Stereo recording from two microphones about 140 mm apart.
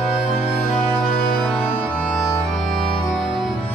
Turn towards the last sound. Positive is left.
turn(degrees=0)  # may be behind; listen again after turning